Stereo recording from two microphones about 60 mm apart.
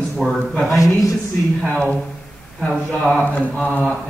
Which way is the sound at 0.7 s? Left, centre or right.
Left.